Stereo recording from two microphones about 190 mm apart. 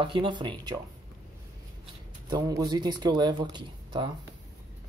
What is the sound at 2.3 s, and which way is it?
Speech, 20° right (ahead or behind).